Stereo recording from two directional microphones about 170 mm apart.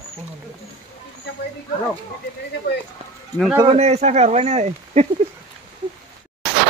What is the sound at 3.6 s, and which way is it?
Speech, 35° right (ahead or behind).